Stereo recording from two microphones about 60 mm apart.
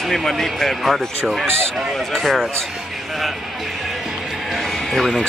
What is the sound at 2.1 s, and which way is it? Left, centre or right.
Speech, centre.